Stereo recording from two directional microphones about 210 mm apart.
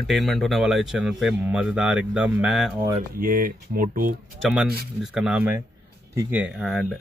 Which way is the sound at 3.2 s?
40° right (ahead or behind).